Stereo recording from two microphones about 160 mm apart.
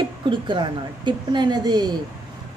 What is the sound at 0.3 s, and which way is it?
A woman's voice, 30° right (ahead or behind).